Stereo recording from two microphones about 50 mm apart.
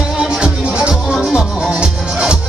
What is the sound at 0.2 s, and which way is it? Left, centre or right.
Music, centre.